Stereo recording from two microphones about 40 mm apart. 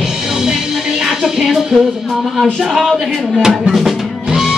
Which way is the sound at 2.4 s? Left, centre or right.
Centre.